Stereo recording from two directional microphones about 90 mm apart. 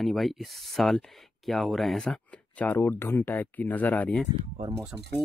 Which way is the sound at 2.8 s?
25° left (ahead or behind).